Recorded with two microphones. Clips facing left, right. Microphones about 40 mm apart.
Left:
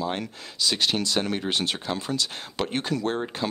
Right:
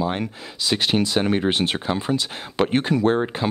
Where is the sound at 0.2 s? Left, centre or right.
Centre.